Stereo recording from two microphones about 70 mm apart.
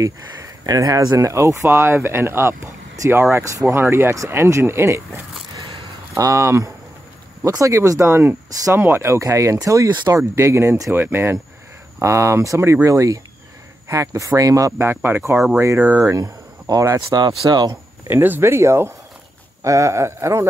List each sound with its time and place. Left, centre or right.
0.0 s speech: right
1.1 s speech: right
6.1 s speech: right
8.1 s speech: right
12.0 s speech: right
15.0 s speech: right
16.2 s speech: right
17.5 s speech: right
18.1 s speech: right